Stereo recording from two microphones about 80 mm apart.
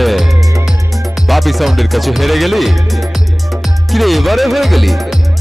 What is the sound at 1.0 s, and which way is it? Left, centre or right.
Speech, centre.